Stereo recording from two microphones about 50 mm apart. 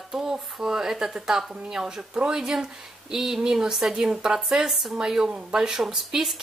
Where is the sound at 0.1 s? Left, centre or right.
Centre.